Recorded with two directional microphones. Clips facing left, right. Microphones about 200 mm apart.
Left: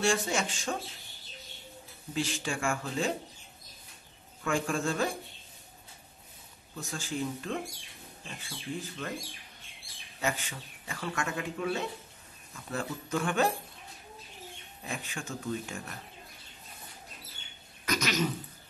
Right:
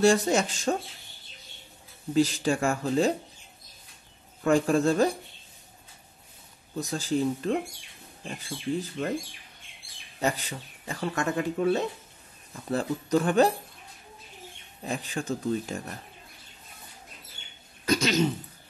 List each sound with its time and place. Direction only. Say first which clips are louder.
0.0 s speech: right 8 dB; 40° right (ahead or behind)
2.1 s speech: right 9 dB; 40° right (ahead or behind)
4.4 s speech: right 8 dB; 40° right (ahead or behind)
6.7 s speech: right 9 dB; 35° right (ahead or behind)
10.2 s speech: right 5 dB; 35° right (ahead or behind)
14.8 s speech: right 7 dB; 35° right (ahead or behind)
17.8 s speech: right 6 dB; 30° right (ahead or behind)